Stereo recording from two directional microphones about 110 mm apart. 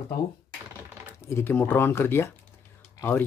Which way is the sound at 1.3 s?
20° left (ahead or behind).